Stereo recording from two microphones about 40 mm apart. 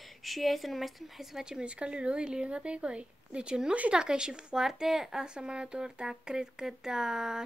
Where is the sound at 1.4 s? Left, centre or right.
Right.